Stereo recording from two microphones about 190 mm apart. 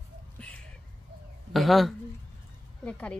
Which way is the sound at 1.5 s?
Centre (ahead or behind).